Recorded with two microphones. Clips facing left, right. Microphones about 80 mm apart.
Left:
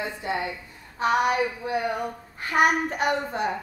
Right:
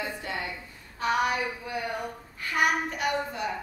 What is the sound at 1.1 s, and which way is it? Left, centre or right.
A woman's voice, left.